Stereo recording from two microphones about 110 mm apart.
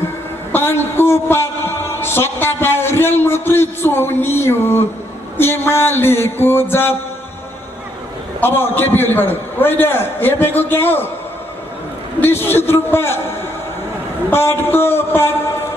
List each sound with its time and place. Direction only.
0.5 s a man's voice: 20° left (ahead or behind)
8.4 s a man's voice: 20° left (ahead or behind)
12.2 s a man's voice: 20° left (ahead or behind)
14.3 s a man's voice: 20° left (ahead or behind)